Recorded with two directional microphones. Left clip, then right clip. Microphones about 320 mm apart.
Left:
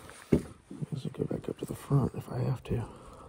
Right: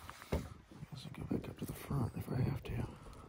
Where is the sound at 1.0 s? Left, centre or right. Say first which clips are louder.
Left 11 dB; left.